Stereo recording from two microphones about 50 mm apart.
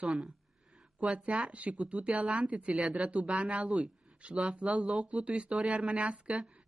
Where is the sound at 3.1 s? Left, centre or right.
Centre.